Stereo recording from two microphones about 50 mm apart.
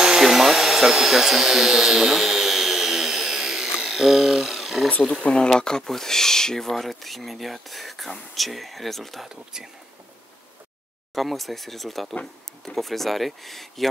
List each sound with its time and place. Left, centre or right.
0.0 s a sound: centre
5.2 s speech: centre
9.3 s speech: centre
11.1 s speech: centre